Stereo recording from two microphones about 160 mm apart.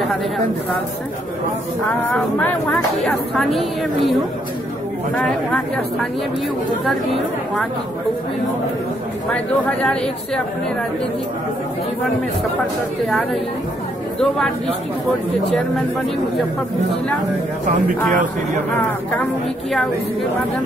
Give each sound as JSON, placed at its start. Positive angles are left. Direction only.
{"t": 2.0, "sound": "a woman's voice", "side_deg": 10}
{"t": 9.3, "sound": "speech", "side_deg": 5}
{"t": 14.2, "sound": "a woman's voice", "side_deg": 5}
{"t": 17.6, "sound": "speech", "side_deg": -55}